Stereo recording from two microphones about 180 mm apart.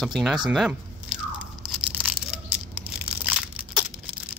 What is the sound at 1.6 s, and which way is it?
Tearing, 5° right (ahead or behind).